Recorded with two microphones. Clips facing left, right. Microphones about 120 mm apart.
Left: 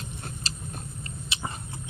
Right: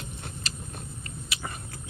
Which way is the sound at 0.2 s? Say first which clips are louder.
Left 1 dB; 35° left (ahead or behind).